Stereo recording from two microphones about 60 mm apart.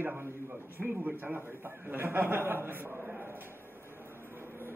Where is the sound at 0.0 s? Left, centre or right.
Right.